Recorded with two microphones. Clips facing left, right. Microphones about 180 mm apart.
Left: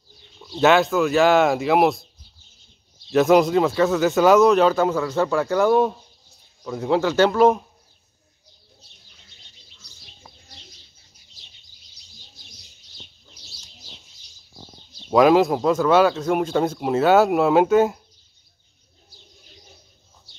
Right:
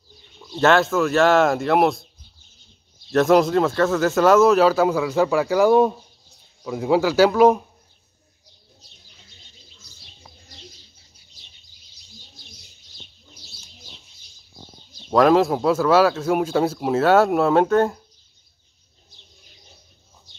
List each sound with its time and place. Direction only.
0.6 s speech: centre (ahead or behind)
3.1 s speech: centre (ahead or behind)
15.0 s speech: centre (ahead or behind)